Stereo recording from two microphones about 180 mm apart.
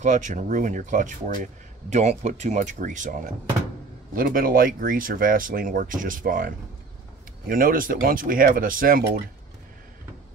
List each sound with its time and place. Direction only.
0.0 s speech: 45° right (ahead or behind)